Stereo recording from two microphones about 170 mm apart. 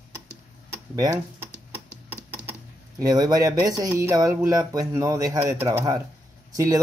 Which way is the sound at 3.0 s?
20° right (ahead or behind).